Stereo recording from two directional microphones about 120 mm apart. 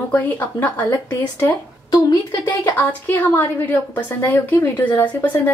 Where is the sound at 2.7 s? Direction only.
15° left (ahead or behind).